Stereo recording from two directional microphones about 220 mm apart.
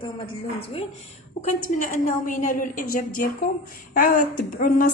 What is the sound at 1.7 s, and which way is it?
Speech, 35° left (ahead or behind).